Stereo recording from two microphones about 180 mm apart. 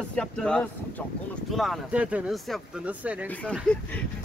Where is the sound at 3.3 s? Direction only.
5° left (ahead or behind).